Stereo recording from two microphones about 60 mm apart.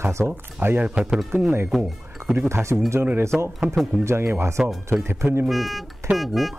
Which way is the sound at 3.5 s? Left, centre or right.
Centre.